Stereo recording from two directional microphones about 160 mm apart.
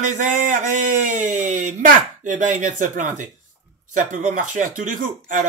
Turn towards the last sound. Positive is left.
turn(degrees=-55)  # may be behind; listen again after turning